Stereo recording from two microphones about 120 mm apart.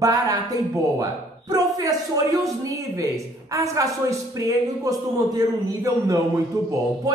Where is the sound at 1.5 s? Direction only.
30° right (ahead or behind).